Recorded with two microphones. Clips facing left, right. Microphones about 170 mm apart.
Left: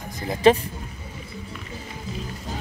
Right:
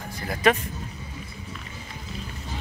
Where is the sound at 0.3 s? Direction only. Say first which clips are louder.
Left 5 dB; 30° left (ahead or behind).